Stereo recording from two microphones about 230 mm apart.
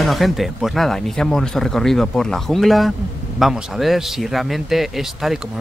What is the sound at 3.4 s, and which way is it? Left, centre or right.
Speech, centre.